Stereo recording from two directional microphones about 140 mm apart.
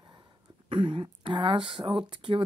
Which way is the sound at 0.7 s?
40° right (ahead or behind).